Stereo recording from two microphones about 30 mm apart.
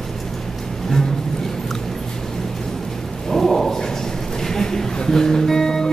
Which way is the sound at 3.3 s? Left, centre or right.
Centre.